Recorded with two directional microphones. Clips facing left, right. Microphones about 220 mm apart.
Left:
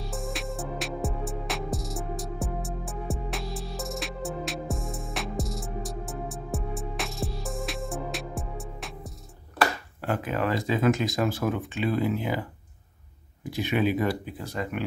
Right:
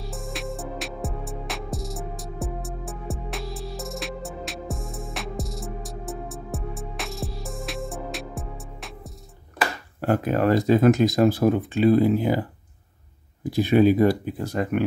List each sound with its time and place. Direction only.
0.0 s music: centre (ahead or behind)
9.9 s speech: 40° right (ahead or behind)